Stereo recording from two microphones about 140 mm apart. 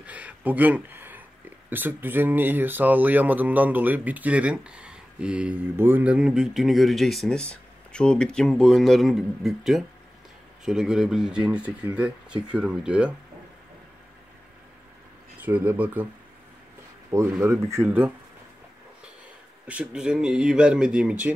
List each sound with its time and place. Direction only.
0.0 s speech: 10° right (ahead or behind)
15.3 s speech: 10° right (ahead or behind)
17.1 s speech: 20° right (ahead or behind)
19.7 s speech: 5° right (ahead or behind)